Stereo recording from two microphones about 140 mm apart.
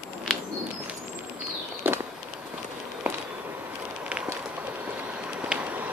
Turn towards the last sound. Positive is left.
turn(degrees=-5)  # may be behind; listen again after turning